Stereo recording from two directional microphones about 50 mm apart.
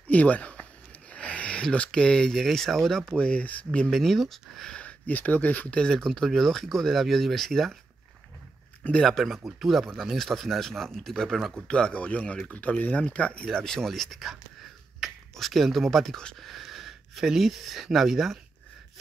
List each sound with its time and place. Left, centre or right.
0.1 s speech: left
1.1 s a sound: left
1.6 s speech: centre
3.2 s speech: left
3.9 s speech: centre
4.7 s speech: left
5.8 s speech: centre
9.0 s speech: centre
11.6 s speech: left
13.5 s speech: centre